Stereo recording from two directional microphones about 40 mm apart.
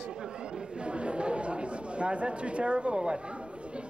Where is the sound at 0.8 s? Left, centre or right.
Right.